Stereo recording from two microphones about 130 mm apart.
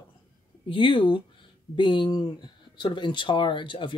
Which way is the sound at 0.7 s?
40° left (ahead or behind).